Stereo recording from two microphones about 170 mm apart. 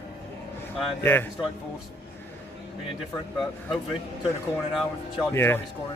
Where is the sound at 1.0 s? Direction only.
10° left (ahead or behind).